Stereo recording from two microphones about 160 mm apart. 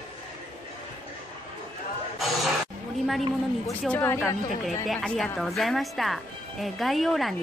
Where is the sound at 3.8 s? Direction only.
10° left (ahead or behind).